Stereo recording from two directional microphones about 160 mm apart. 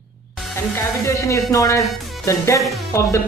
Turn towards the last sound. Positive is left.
turn(degrees=20)  # may be behind; listen again after turning